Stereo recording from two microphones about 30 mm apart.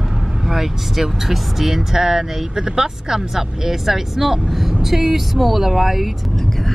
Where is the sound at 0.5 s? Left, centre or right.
Centre.